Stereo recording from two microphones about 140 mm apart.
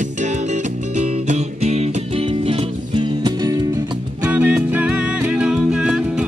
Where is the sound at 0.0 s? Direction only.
60° right (ahead or behind); by 4.0 s 25° right (ahead or behind).